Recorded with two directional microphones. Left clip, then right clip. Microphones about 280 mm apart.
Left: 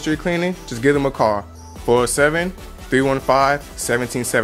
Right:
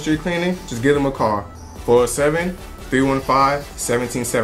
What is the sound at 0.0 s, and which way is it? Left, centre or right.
Speech, left.